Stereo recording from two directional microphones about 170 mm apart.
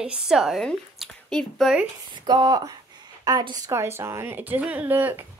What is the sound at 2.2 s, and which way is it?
A woman's voice, 25° right (ahead or behind).